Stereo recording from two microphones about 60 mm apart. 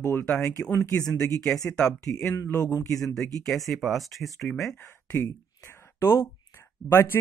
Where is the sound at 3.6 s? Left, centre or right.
Centre.